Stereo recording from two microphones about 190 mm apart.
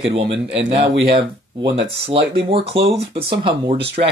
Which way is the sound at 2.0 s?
30° right (ahead or behind).